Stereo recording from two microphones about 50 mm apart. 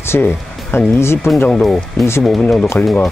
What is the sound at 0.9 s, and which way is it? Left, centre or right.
Speech, left.